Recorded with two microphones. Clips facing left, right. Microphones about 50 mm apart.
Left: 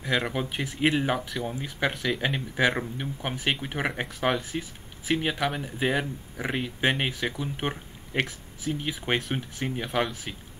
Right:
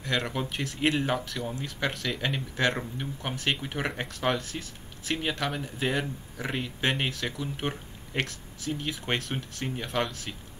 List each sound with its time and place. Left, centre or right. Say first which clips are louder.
0.0 s speech: left 2 dB; centre